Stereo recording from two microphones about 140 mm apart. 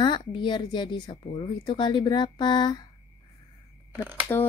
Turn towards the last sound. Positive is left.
turn(degrees=20)  # may be behind; listen again after turning